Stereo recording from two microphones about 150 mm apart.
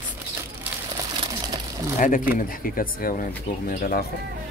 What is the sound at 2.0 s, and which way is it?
Speech, 60° left (ahead or behind).